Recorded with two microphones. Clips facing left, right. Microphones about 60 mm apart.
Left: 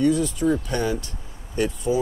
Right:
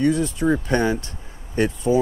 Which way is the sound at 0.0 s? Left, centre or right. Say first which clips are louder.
Right 1 dB; right.